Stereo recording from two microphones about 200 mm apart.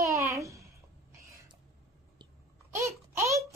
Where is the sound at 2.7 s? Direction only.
15° right (ahead or behind).